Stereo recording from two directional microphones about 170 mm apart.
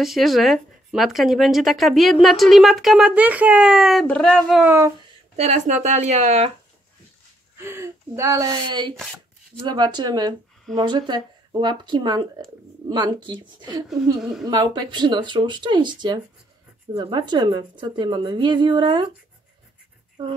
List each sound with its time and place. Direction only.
0.0 s speech: centre (ahead or behind)
4.6 s speech: 15° right (ahead or behind)
5.3 s speech: 40° right (ahead or behind)
7.5 s speech: 15° right (ahead or behind)
20.2 s speech: 25° right (ahead or behind)